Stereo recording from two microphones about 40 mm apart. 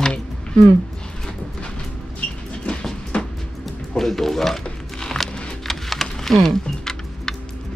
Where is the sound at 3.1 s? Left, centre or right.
Left.